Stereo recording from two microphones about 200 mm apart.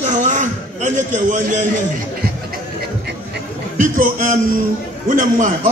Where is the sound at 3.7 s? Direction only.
40° right (ahead or behind).